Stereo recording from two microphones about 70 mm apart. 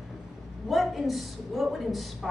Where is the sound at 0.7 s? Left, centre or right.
Centre.